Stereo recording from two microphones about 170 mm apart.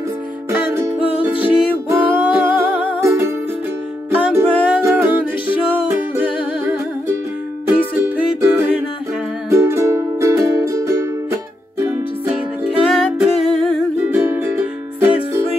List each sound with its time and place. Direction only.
0.5 s music: 15° right (ahead or behind)
12.3 s music: 5° right (ahead or behind)
14.1 s music: 10° right (ahead or behind)